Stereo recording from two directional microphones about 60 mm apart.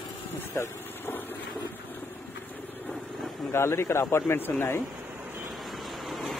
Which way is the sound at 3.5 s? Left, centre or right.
Left.